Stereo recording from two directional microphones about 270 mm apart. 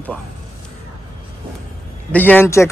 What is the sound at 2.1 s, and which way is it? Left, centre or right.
Speech, centre.